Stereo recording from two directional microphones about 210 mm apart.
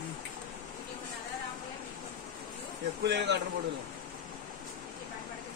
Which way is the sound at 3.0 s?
55° right (ahead or behind).